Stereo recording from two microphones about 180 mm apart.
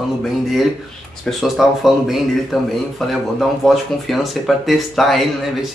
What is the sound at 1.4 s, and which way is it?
Speech, centre (ahead or behind).